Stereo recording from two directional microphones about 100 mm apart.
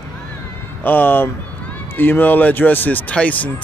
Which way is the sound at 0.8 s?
20° left (ahead or behind).